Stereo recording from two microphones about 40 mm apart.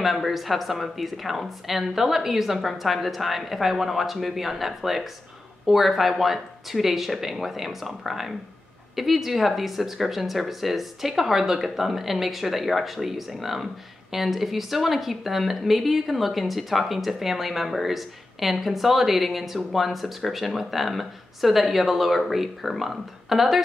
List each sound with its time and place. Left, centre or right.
0.0 s speech: centre